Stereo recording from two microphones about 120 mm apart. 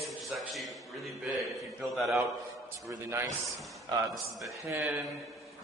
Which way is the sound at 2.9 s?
25° right (ahead or behind).